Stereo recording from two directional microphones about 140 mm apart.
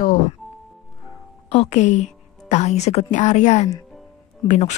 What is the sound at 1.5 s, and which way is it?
A woman's voice, 50° left (ahead or behind).